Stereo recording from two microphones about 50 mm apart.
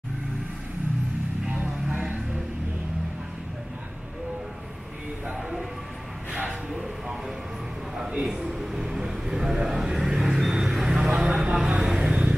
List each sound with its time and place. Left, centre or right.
1.5 s music: right
6.7 s a sound: centre
12.0 s vehicle: right